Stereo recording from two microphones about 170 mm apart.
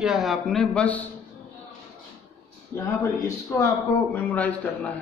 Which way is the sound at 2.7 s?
15° left (ahead or behind).